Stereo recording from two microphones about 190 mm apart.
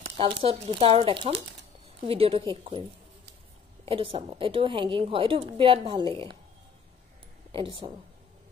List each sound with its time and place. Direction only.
0.2 s a woman's voice: 30° right (ahead or behind)
3.8 s a woman's voice: 30° right (ahead or behind)
7.5 s a woman's voice: 30° right (ahead or behind)